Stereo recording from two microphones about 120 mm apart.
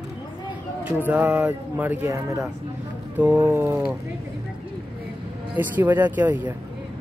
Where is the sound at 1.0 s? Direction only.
10° right (ahead or behind).